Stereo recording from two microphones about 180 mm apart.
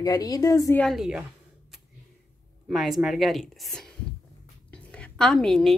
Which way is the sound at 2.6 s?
Centre (ahead or behind).